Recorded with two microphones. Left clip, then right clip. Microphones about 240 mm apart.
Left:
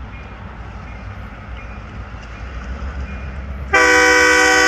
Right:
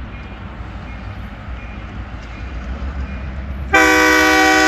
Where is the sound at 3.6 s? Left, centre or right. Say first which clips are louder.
Even; centre.